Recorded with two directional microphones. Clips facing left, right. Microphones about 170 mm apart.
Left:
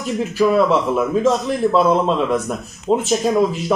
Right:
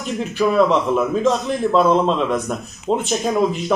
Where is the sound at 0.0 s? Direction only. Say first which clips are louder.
Left 2 dB; 5° left (ahead or behind).